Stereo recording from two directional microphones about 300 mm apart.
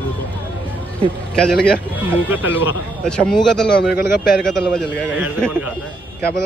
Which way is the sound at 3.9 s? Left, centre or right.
Left.